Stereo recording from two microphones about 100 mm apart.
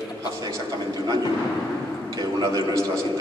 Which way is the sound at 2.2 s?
40° right (ahead or behind).